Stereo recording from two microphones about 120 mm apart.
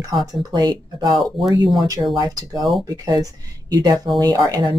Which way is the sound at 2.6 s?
Centre (ahead or behind).